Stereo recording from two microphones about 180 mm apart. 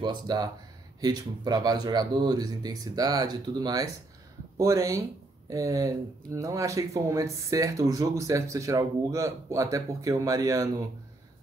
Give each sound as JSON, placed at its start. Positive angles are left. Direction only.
{"t": 0.0, "sound": "speech", "side_deg": -25}